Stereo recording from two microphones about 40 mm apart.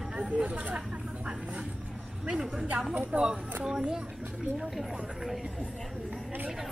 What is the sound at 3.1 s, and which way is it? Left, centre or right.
Speech, right.